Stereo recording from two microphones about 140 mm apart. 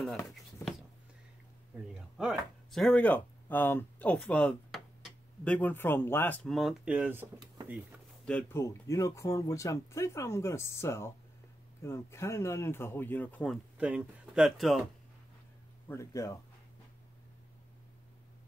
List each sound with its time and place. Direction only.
2.0 s speech: 5° right (ahead or behind)
6.5 s speech: centre (ahead or behind)
8.3 s speech: 15° left (ahead or behind)
13.7 s speech: 10° right (ahead or behind)
15.9 s speech: 20° left (ahead or behind)